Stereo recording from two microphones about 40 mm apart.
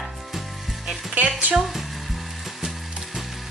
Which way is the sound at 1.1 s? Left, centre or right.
Right.